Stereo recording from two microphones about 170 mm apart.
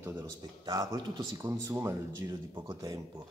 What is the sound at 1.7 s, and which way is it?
Speech, 15° right (ahead or behind).